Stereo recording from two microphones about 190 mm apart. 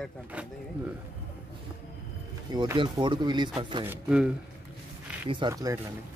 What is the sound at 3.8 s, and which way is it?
Speech, 10° right (ahead or behind).